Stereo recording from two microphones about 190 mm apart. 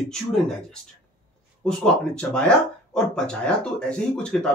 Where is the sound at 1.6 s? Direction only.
5° left (ahead or behind).